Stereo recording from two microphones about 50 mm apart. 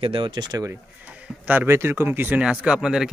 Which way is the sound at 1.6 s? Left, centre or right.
Right.